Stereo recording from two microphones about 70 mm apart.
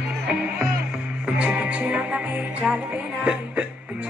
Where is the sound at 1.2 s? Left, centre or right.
Centre.